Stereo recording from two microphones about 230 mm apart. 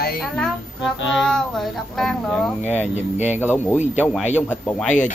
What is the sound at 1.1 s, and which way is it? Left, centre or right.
A woman's voice, centre.